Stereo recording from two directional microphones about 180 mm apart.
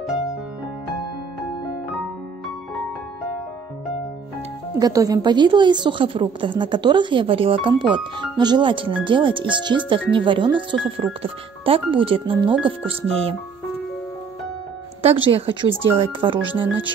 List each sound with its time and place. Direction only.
4.7 s a woman's voice: 20° right (ahead or behind)
15.0 s a woman's voice: 30° right (ahead or behind)